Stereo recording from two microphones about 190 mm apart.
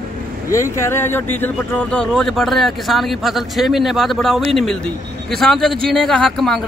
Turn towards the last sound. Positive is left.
turn(degrees=0)  # may be behind; listen again after turning